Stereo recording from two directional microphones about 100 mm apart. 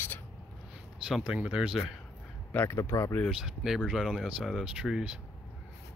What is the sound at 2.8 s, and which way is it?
Speech, 35° left (ahead or behind).